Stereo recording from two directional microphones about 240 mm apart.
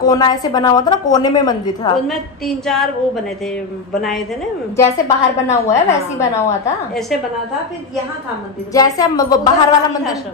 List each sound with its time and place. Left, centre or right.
0.0 s a woman's voice: centre
2.0 s a woman's voice: centre
4.7 s a woman's voice: centre
8.7 s a woman's voice: centre